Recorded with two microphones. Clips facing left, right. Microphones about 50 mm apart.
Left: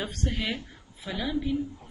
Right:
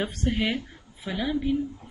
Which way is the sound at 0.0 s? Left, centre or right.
Centre.